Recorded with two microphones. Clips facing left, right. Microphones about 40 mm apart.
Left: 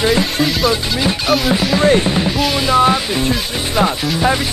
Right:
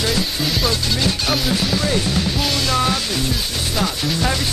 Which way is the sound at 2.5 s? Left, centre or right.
Centre.